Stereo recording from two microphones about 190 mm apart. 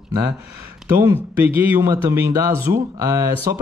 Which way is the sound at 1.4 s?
10° right (ahead or behind).